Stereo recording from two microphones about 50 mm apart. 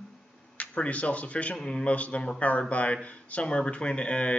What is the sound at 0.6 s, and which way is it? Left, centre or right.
Speech, left.